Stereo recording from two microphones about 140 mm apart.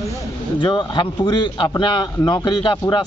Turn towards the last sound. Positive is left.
turn(degrees=35)  # may be behind; listen again after turning